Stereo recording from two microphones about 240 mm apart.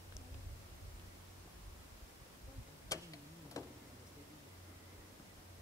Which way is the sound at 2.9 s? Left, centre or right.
Centre.